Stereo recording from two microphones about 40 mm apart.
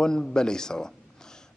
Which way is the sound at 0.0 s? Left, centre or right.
Centre.